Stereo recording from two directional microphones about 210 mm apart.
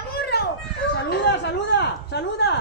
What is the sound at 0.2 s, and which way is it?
Children playing, 50° left (ahead or behind).